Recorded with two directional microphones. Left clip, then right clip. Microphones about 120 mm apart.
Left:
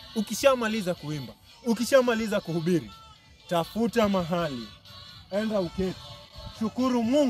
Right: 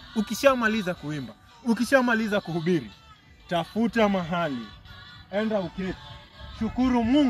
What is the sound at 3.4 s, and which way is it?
Speech, 55° left (ahead or behind).